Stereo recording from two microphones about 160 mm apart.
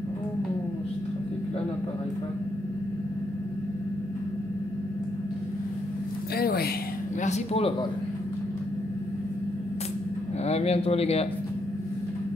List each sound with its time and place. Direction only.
6.3 s a sound: 75° left (ahead or behind)
7.2 s speech: 40° left (ahead or behind)
10.4 s speech: 40° left (ahead or behind)